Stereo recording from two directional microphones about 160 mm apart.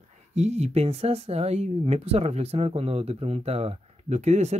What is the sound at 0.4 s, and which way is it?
Speech, 45° right (ahead or behind).